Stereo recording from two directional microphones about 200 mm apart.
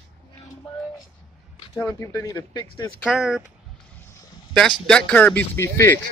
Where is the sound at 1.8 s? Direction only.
15° left (ahead or behind).